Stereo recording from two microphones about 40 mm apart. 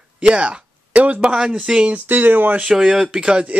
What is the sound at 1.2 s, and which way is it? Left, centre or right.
Speech, centre.